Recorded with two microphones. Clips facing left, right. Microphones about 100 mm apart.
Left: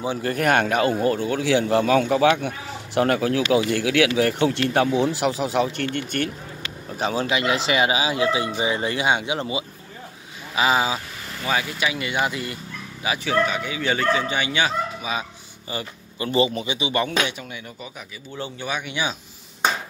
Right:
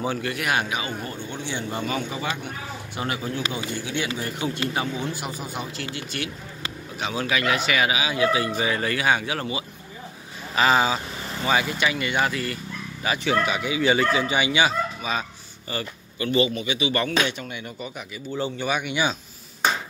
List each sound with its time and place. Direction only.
0.2 s speech: 40° left (ahead or behind)
0.8 s a man's voice: 90° left; by 5.0 s 70° left (ahead or behind)
5.2 s a man's voice: 80° left
5.9 s speech: 50° left (ahead or behind)
7.0 s a man's voice: 35° left (ahead or behind)
7.2 s speech: 25° left (ahead or behind)
10.5 s speech: 10° left (ahead or behind)
11.4 s speech: centre (ahead or behind)
12.3 s speech: 15° left (ahead or behind)
13.0 s speech: 5° left (ahead or behind)
15.1 s speech: 5° left (ahead or behind)
16.2 s speech: 30° left (ahead or behind)
16.9 s speech: 10° left (ahead or behind)
18.4 s speech: 5° right (ahead or behind)